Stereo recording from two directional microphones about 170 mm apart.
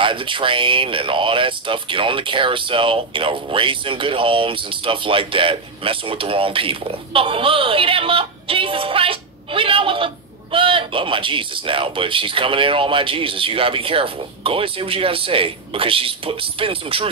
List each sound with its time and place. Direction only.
0.0 s speech: 30° right (ahead or behind)